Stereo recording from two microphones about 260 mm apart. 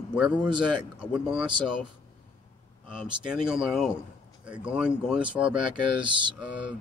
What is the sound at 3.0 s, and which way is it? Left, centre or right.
Speech, centre.